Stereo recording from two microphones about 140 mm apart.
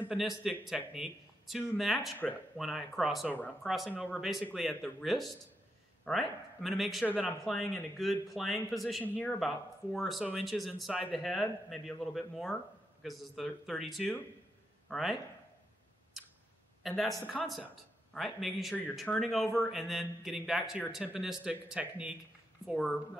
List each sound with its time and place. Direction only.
0.0 s a man's voice: 5° right (ahead or behind)
9.0 s a man's voice: 10° left (ahead or behind)
9.9 s a man's voice: centre (ahead or behind)
16.8 s a man's voice: centre (ahead or behind)